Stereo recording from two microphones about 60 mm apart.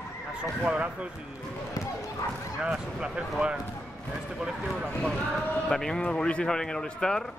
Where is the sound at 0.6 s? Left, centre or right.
Centre.